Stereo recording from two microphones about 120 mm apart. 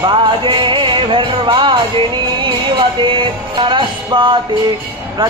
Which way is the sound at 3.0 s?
45° right (ahead or behind).